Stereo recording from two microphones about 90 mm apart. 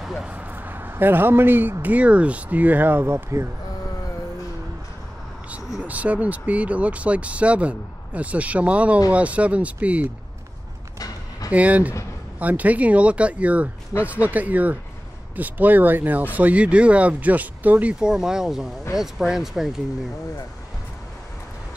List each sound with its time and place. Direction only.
0.0 s a sound: 5° right (ahead or behind)
0.3 s speech: 20° right (ahead or behind)
5.9 s speech: 15° right (ahead or behind)
11.5 s speech: 15° right (ahead or behind)